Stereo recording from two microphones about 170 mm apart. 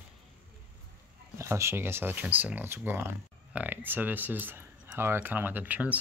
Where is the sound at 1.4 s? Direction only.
15° right (ahead or behind).